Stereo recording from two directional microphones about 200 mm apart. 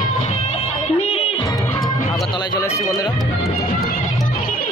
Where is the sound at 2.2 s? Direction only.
20° left (ahead or behind).